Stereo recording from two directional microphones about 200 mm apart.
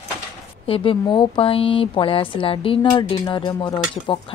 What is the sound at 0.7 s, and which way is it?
Dishes, 25° left (ahead or behind).